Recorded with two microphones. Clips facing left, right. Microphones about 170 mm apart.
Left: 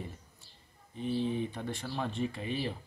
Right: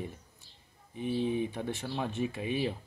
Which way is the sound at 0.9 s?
15° right (ahead or behind).